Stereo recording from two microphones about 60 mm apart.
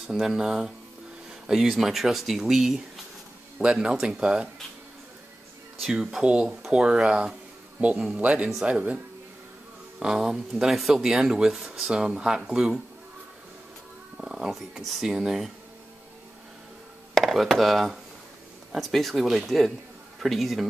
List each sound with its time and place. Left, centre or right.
0.1 s speech: centre
5.9 s speech: centre
14.1 s speech: centre
17.1 s speech: centre